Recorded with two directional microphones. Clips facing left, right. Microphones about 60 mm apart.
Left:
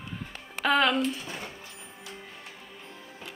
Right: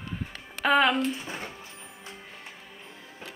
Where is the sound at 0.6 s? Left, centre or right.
Centre.